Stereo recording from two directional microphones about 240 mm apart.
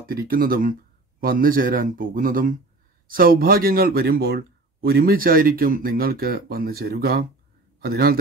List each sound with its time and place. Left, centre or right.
0.0 s speech: right